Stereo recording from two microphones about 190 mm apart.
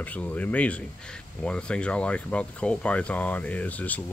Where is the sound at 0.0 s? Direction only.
10° left (ahead or behind).